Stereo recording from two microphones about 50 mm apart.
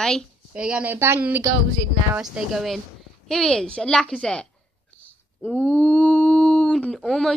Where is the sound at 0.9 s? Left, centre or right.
Right.